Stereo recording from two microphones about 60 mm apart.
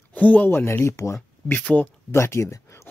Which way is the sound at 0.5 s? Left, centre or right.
Left.